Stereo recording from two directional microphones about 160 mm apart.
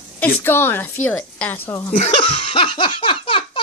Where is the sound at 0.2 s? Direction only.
15° left (ahead or behind).